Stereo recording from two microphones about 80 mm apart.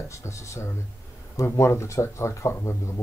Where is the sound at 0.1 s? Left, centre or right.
Left.